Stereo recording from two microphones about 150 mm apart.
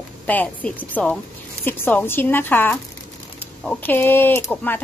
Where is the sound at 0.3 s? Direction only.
10° left (ahead or behind).